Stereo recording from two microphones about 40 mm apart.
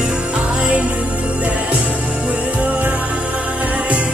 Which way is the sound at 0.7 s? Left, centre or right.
Right.